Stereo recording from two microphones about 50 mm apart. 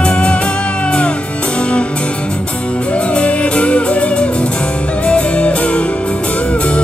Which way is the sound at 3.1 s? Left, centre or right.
Left.